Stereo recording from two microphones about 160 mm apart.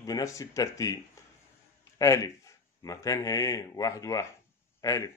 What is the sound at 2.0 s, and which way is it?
Speech, 20° left (ahead or behind).